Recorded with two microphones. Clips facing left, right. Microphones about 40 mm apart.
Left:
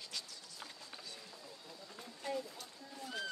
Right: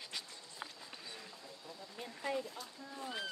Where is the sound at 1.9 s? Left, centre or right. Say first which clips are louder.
Right 2 dB; right.